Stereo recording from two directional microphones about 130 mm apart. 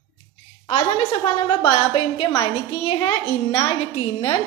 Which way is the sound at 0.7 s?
45° left (ahead or behind).